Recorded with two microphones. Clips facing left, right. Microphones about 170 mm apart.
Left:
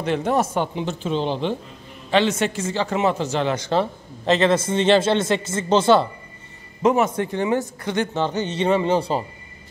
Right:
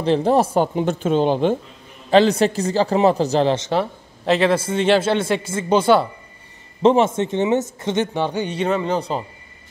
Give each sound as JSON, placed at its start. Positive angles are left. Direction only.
{"t": 0.0, "sound": "a man's voice", "side_deg": -30}
{"t": 0.7, "sound": "speech", "side_deg": -50}
{"t": 2.0, "sound": "a man's voice", "side_deg": -35}
{"t": 4.3, "sound": "speech", "side_deg": -10}
{"t": 6.8, "sound": "a man's voice", "side_deg": -30}
{"t": 8.6, "sound": "speech", "side_deg": 5}